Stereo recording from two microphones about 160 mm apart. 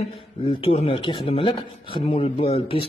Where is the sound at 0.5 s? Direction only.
35° left (ahead or behind).